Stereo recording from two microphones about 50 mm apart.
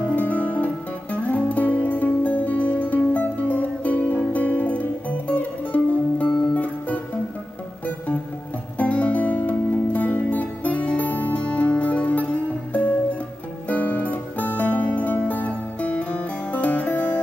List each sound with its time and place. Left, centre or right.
0.0 s music: left
8.7 s music: left